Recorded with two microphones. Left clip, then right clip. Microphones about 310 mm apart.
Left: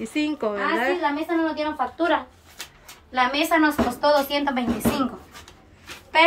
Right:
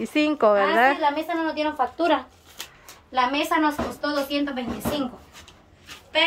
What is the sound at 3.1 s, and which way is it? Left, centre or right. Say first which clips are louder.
Speech: left 1 dB; centre.